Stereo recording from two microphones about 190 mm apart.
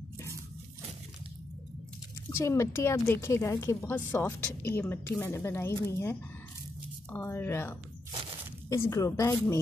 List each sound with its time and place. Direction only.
2.2 s a woman's voice: 15° left (ahead or behind)